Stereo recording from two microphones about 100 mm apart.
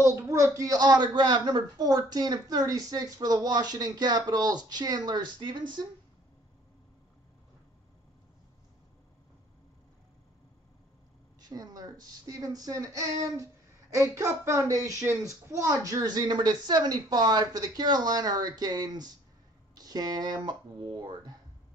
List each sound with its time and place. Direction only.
0.0 s a woman's voice: 30° right (ahead or behind)
0.6 s a man's voice: 40° right (ahead or behind)
11.4 s a man's voice: 40° right (ahead or behind)